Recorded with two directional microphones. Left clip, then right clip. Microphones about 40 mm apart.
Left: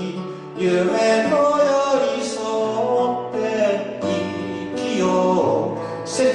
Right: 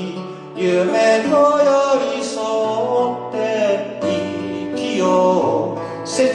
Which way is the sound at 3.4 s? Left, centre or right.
Right.